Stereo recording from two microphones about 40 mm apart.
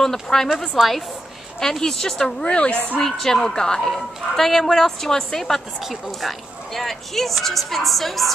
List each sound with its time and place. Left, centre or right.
0.0 s a woman's voice: centre
0.8 s a woman's voice: centre
1.6 s a woman's voice: centre
2.5 s a woman's voice: left
3.0 s a woman's voice: centre
5.8 s speech: centre
6.7 s a woman's voice: centre